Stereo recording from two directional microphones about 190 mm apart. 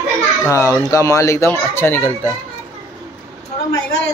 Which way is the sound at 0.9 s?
15° left (ahead or behind).